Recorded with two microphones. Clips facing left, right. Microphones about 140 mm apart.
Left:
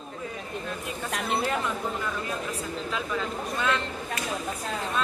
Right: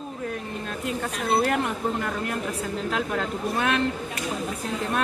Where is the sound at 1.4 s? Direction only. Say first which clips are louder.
Right 4 dB; 60° right (ahead or behind).